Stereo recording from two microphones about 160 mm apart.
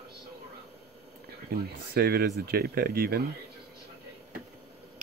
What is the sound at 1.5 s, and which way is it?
Speech, 75° right (ahead or behind).